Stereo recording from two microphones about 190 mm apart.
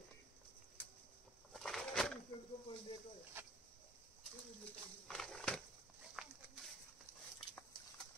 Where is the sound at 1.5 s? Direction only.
Centre (ahead or behind).